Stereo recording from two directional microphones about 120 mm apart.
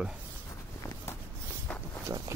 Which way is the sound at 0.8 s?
25° left (ahead or behind).